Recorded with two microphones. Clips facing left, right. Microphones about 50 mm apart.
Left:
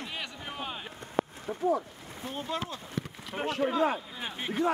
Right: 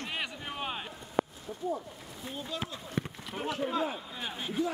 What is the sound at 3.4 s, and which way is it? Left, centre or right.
Speech, left.